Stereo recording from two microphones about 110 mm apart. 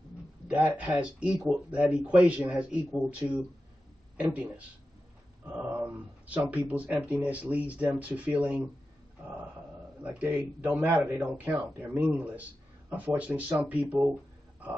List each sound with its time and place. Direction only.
0.5 s speech: 10° right (ahead or behind)
9.2 s dog: 15° right (ahead or behind)
10.2 s speech: 15° right (ahead or behind)